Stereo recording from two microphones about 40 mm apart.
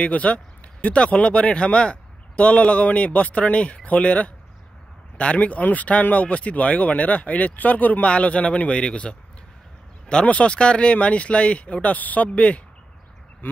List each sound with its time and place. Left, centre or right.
0.0 s speech: left
8.1 s speech: left